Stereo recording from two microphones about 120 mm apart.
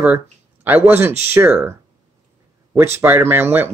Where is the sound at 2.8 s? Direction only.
20° right (ahead or behind).